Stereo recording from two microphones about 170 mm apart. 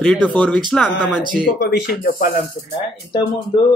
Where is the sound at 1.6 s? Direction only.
65° left (ahead or behind).